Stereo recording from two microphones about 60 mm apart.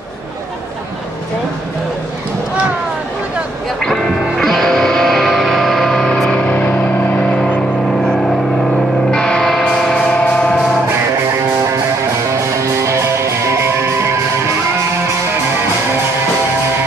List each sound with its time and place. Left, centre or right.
3.8 s music: centre
6.4 s vehicle: left
9.1 s music: centre
10.1 s music: centre
12.3 s music: right